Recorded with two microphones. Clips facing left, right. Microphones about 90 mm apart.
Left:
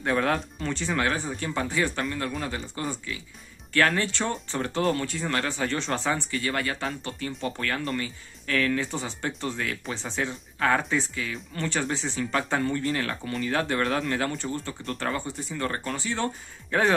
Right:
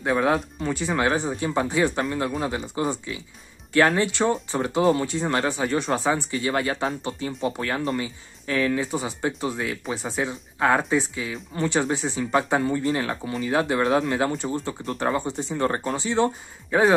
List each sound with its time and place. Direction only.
0.0 s speech: 10° right (ahead or behind)
16.7 s speech: 10° right (ahead or behind)